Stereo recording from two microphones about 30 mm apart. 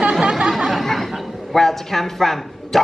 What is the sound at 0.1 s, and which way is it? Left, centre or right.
Chatter, right.